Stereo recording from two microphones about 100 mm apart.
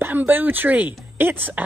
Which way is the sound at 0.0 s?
20° right (ahead or behind).